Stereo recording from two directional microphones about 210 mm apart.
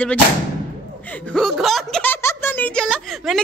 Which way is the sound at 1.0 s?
5° left (ahead or behind).